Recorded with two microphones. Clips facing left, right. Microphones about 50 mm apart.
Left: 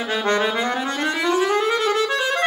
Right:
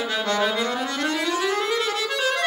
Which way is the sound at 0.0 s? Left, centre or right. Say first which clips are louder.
Left 3 dB; left.